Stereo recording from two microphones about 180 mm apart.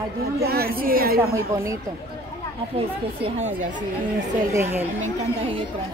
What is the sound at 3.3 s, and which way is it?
Speech, 40° right (ahead or behind).